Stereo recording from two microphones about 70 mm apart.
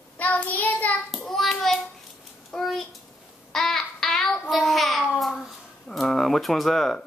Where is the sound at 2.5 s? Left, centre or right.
Centre.